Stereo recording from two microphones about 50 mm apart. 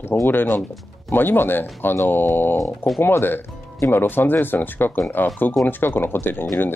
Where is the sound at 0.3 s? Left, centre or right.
Left.